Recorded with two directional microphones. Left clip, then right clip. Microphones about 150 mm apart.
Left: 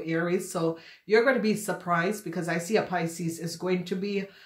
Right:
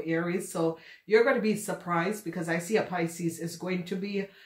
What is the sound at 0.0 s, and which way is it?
Speech, 35° left (ahead or behind).